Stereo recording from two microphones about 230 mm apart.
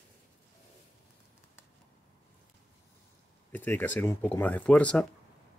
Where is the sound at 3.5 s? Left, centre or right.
Centre.